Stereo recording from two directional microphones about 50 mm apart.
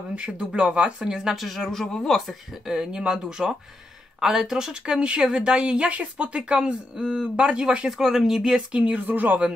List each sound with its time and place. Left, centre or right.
0.4 s speech: centre
1.1 s speech: centre
1.6 s speech: centre
2.6 s speech: centre
8.7 s speech: right